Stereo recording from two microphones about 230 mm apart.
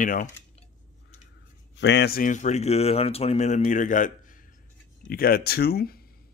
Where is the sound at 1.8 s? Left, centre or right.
Left.